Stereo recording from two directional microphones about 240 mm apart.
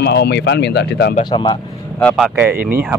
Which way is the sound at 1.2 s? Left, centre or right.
Centre.